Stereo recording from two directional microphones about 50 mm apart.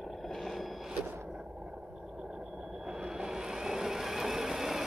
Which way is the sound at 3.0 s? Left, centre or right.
Centre.